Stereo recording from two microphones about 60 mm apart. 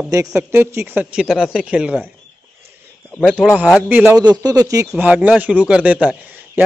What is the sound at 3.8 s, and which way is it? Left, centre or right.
Speech, right.